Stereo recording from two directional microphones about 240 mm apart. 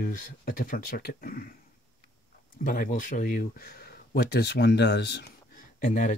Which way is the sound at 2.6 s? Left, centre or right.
Left.